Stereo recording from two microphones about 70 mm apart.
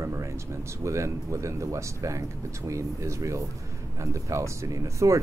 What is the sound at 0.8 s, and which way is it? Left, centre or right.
Speech, right.